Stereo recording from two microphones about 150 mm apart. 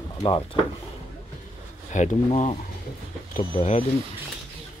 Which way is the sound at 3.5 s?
45° left (ahead or behind).